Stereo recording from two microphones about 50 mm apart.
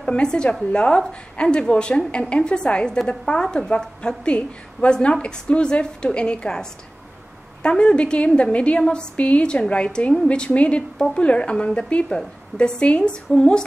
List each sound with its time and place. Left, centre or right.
0.0 s a woman's voice: centre